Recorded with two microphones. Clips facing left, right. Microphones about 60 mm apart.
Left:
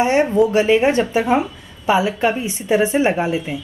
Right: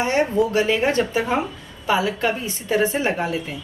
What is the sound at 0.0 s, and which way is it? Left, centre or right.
Speech, left.